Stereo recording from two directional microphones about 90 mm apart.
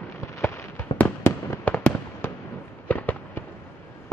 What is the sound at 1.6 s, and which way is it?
Fireworks, 15° left (ahead or behind).